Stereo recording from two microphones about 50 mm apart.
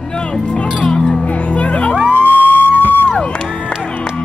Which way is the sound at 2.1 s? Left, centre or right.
Left.